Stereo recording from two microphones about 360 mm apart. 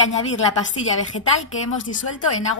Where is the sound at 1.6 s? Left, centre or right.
Left.